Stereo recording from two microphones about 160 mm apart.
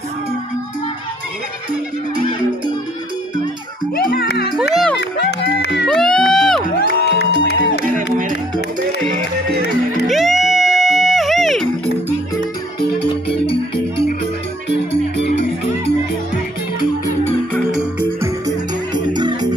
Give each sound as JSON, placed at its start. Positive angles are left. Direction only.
{"t": 3.9, "sound": "music", "side_deg": 80}
{"t": 4.6, "sound": "music", "side_deg": 0}
{"t": 5.1, "sound": "music", "side_deg": 90}
{"t": 5.9, "sound": "music", "side_deg": 5}
{"t": 6.9, "sound": "music", "side_deg": 90}
{"t": 10.0, "sound": "music", "side_deg": 0}
{"t": 19.1, "sound": "music", "side_deg": -25}